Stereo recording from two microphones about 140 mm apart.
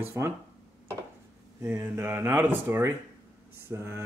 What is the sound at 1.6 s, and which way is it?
Speech, 15° right (ahead or behind).